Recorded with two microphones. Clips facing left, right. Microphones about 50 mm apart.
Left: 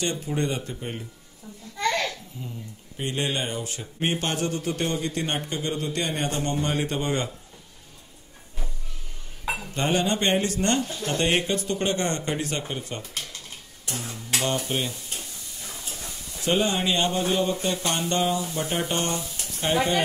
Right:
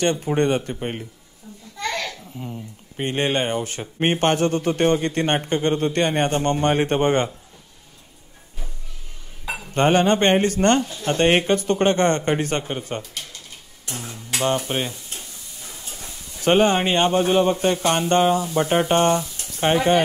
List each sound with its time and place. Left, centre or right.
0.0 s a man's voice: right
2.0 s a man's voice: right
9.8 s speech: right
12.7 s speech: right
13.8 s music: centre
14.3 s dishes: right
14.7 s speech: right
15.9 s a sound: centre
16.4 s speech: right